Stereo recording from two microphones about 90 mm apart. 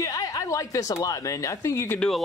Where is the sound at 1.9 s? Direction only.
5° left (ahead or behind).